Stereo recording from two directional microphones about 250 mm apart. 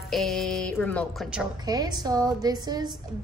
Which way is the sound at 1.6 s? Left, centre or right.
Centre.